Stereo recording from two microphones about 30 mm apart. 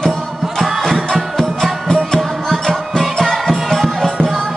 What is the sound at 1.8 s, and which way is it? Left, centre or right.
Music, left.